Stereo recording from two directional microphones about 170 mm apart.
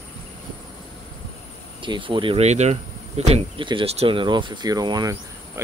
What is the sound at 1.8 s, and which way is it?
Speech, 30° right (ahead or behind).